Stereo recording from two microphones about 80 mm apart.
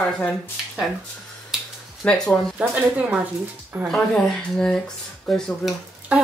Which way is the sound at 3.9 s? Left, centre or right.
Centre.